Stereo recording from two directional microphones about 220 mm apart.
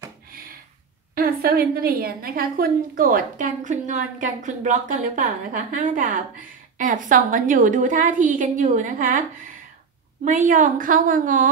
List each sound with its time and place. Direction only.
1.1 s a woman's voice: 45° right (ahead or behind)
10.2 s a woman's voice: 35° right (ahead or behind)